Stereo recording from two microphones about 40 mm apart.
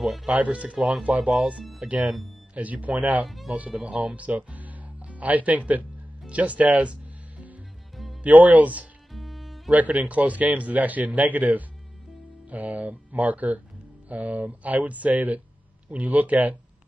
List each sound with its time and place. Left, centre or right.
0.0 s speech: centre
0.3 s a man's voice: right
3.5 s music: right
7.9 s music: centre
8.2 s a man's voice: right
9.1 s music: centre
9.7 s a man's voice: right